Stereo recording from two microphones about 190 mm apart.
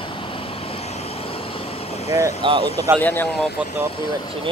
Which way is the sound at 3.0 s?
10° left (ahead or behind).